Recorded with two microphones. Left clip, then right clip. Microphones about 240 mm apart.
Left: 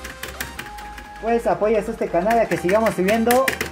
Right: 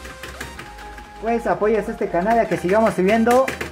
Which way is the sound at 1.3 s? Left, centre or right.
Centre.